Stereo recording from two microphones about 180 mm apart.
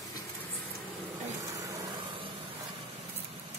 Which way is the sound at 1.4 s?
20° right (ahead or behind).